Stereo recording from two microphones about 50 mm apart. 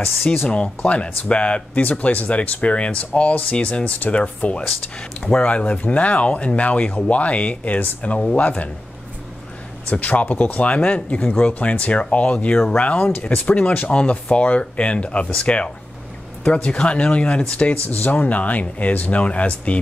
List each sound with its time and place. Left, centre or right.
0.0 s speech: left
0.5 s speech: left
9.8 s speech: left
17.8 s speech: left